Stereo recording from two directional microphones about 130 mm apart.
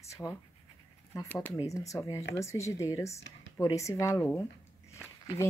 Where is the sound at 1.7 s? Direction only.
25° left (ahead or behind).